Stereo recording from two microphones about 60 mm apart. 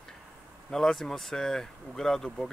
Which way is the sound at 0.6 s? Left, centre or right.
Centre.